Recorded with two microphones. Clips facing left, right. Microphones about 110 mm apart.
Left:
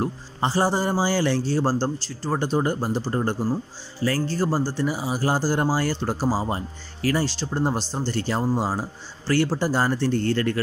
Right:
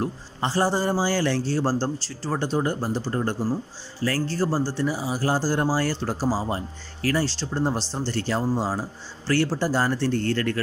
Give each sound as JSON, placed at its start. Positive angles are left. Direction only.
{"t": 0.0, "sound": "a man's voice", "side_deg": 10}
{"t": 3.1, "sound": "speech", "side_deg": 20}
{"t": 4.0, "sound": "speech", "side_deg": 5}
{"t": 4.4, "sound": "speech", "side_deg": 20}
{"t": 5.0, "sound": "speech", "side_deg": 5}
{"t": 7.0, "sound": "speech", "side_deg": 20}
{"t": 7.2, "sound": "speech", "side_deg": 5}
{"t": 8.1, "sound": "speech", "side_deg": 15}
{"t": 10.0, "sound": "speech", "side_deg": 15}